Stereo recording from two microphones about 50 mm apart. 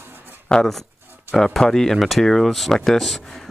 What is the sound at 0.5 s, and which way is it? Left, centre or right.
Speech, centre.